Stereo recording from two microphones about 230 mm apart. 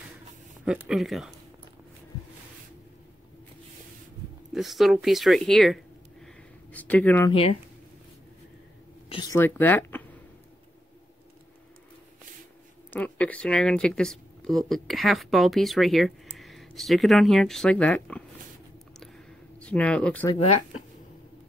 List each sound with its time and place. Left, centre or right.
0.7 s speech: centre
4.6 s speech: centre
6.2 s a sound: centre
7.2 s speech: left
9.1 s speech: centre
12.9 s speech: centre
18.9 s a sound: centre